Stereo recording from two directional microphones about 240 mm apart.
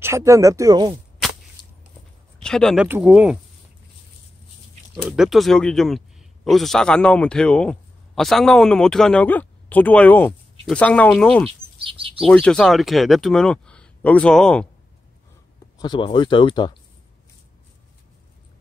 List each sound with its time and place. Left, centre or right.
0.0 s speech: centre
2.4 s speech: centre
4.9 s speech: centre
11.8 s chirp: right
12.2 s speech: centre
15.8 s speech: centre